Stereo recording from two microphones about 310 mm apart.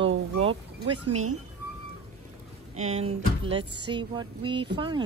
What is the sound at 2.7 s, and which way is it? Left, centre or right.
Speech, right.